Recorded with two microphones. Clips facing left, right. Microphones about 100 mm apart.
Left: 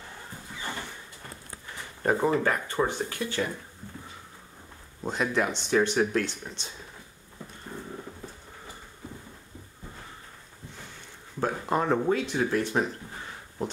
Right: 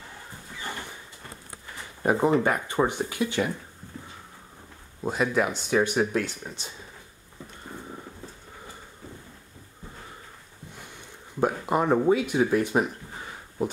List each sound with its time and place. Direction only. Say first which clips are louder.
2.0 s speech: right 2 dB; 20° right (ahead or behind)
5.0 s speech: right 2 dB; 5° right (ahead or behind)
11.3 s speech: right 3 dB; 10° right (ahead or behind)